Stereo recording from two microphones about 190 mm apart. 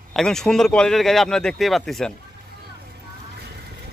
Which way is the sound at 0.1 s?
Centre (ahead or behind).